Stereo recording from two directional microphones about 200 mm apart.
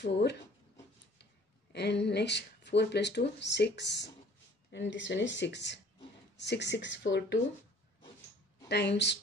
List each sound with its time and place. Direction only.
0.0 s speech: 55° left (ahead or behind)
1.7 s speech: 55° left (ahead or behind)
8.6 s speech: 55° left (ahead or behind)